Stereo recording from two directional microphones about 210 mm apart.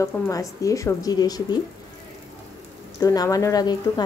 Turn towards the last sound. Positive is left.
turn(degrees=20)  # may be behind; listen again after turning